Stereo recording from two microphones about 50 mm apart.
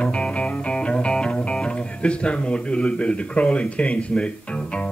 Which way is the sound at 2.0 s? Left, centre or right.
Left.